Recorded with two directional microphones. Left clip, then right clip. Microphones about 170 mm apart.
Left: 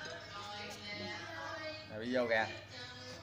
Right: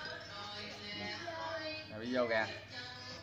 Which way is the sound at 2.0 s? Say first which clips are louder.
Left 1 dB; 50° left (ahead or behind).